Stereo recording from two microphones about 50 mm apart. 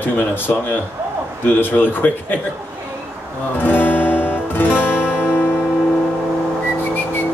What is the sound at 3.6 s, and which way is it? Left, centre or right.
Music, left.